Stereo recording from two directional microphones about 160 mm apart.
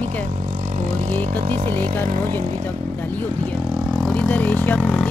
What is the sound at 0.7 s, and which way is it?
Speech, 45° right (ahead or behind).